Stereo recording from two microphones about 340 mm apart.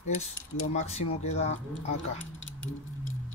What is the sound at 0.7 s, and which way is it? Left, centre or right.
Speech, centre.